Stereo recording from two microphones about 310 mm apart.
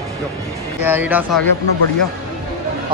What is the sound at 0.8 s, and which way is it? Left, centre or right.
Speech, centre.